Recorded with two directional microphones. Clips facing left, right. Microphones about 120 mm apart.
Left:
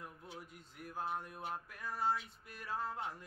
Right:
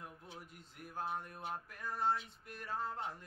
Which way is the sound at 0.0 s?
Centre (ahead or behind).